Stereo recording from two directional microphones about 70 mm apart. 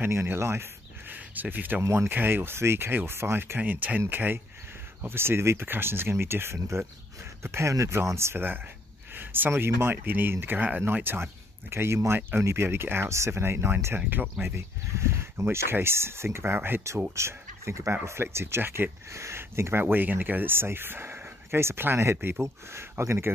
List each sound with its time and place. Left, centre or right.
0.0 s speech: right
1.1 s speech: right
1.8 s speech: right
12.2 s speech: right